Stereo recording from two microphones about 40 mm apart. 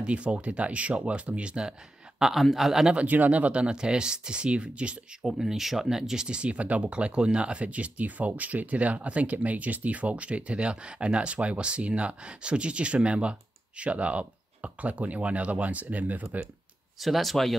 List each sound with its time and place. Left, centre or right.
0.0 s speech: right; by 2.9 s centre
3.1 s speech: right
3.6 s speech: right
5.2 s speech: centre
6.2 s speech: right
17.0 s speech: centre